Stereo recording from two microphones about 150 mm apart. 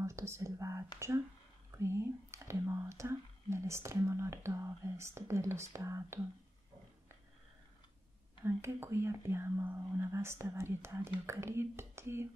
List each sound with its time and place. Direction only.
0.0 s speech: 20° right (ahead or behind)
8.5 s speech: 15° right (ahead or behind)